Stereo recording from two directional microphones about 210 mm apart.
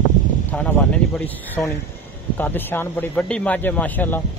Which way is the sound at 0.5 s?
10° left (ahead or behind).